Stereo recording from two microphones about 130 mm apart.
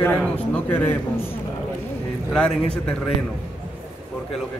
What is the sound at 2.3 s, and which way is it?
Speech, 5° left (ahead or behind).